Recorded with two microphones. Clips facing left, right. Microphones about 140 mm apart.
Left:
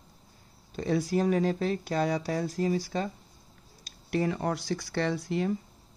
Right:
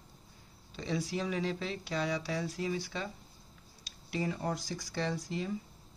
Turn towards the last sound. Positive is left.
turn(degrees=60)  # may be behind; listen again after turning